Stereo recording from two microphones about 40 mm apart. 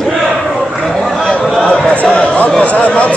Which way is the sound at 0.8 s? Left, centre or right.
Centre.